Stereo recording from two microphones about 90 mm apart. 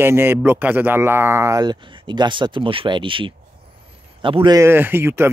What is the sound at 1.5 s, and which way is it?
A man's voice, 50° right (ahead or behind).